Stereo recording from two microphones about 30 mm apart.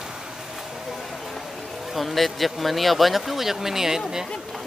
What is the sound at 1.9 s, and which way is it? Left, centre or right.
Speech, centre.